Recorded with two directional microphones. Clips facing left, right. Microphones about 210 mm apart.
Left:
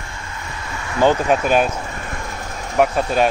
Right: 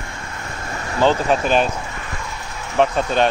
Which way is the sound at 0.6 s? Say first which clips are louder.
Right 2 dB; 50° right (ahead or behind).